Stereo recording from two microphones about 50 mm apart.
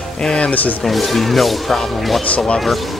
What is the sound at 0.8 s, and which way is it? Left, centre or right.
Speech, centre.